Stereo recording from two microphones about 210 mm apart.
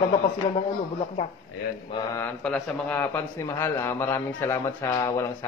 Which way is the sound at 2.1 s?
5° left (ahead or behind).